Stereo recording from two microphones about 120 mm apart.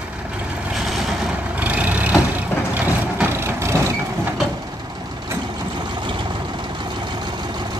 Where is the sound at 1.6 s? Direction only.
10° right (ahead or behind).